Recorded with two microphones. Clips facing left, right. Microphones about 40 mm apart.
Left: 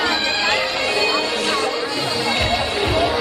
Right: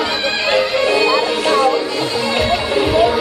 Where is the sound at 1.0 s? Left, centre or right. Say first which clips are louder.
Right 5 dB; centre.